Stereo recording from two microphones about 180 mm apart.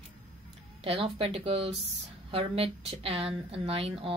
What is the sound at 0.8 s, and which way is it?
A woman's voice, 30° right (ahead or behind).